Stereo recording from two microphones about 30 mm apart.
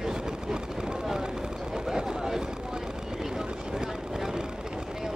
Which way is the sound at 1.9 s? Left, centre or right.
Centre.